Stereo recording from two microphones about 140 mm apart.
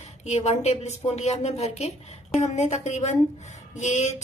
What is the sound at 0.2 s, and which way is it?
A woman's voice, 55° left (ahead or behind).